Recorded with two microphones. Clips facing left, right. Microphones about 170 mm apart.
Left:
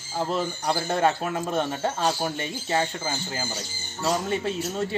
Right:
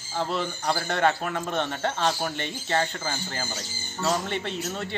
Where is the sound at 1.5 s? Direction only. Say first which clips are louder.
Left 1 dB; 10° left (ahead or behind).